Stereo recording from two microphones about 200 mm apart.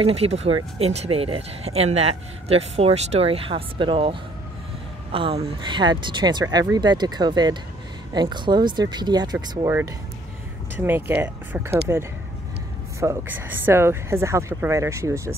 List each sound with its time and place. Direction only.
0.0 s speech: 30° right (ahead or behind)
10.8 s speech: 10° right (ahead or behind)
13.0 s speech: 10° right (ahead or behind)